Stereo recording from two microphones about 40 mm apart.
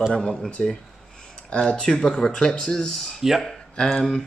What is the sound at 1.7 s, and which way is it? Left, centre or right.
Speech, left.